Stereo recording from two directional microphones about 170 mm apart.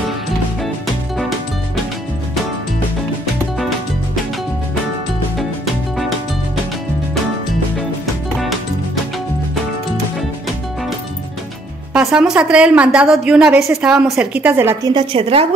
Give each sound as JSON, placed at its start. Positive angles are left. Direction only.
{"t": 5.9, "sound": "music", "side_deg": 0}
{"t": 11.9, "sound": "a woman's voice", "side_deg": -5}
{"t": 15.0, "sound": "a woman's voice", "side_deg": -35}